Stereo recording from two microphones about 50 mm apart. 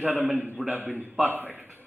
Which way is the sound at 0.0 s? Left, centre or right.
Right.